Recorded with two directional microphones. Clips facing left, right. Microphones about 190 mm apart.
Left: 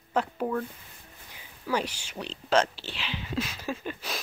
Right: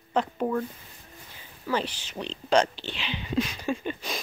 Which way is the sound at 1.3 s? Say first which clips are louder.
Right 1 dB; 10° left (ahead or behind).